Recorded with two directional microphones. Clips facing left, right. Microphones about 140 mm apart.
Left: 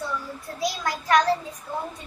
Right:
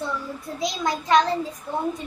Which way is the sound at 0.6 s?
20° right (ahead or behind).